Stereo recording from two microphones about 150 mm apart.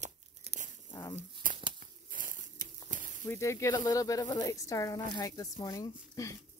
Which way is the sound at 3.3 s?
20° left (ahead or behind).